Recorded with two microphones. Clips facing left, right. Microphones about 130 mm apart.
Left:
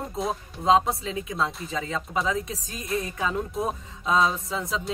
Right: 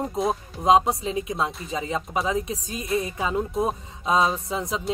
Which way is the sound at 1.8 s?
15° right (ahead or behind).